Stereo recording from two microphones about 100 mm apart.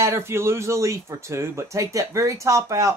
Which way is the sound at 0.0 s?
25° right (ahead or behind).